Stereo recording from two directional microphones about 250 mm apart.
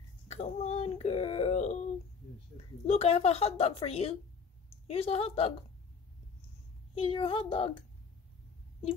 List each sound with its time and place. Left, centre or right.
0.3 s wail: left
2.5 s speech: left
7.0 s speech: left